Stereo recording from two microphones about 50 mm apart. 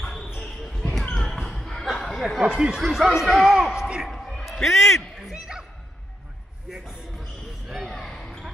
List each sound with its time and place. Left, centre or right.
0.0 s basketball bounce: centre
1.3 s basketball bounce: centre
2.1 s a sound: centre
2.5 s speech: centre
4.1 s a sound: centre
5.3 s music: centre
6.7 s basketball bounce: centre
7.8 s basketball bounce: centre